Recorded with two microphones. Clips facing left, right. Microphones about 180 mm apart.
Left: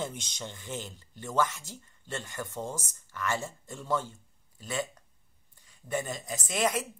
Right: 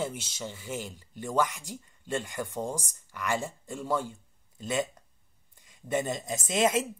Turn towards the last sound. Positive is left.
turn(degrees=-25)  # may be behind; listen again after turning